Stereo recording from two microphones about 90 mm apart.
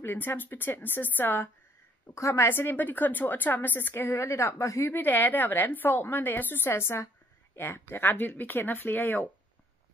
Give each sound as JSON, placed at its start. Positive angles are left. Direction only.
{"t": 0.0, "sound": "a woman's voice", "side_deg": 25}